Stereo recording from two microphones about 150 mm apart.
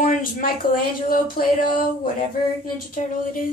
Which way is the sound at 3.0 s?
50° left (ahead or behind).